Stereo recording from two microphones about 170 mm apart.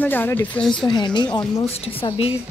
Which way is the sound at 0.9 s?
25° left (ahead or behind).